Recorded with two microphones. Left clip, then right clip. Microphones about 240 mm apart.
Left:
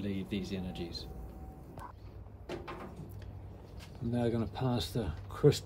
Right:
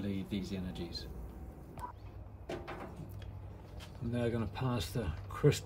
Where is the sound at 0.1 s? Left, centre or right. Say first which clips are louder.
Left 2 dB; right.